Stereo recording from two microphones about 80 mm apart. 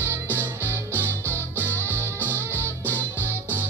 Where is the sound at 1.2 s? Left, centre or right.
Left.